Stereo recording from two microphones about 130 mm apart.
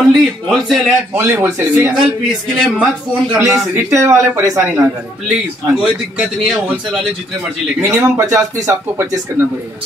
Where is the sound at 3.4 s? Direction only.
20° right (ahead or behind).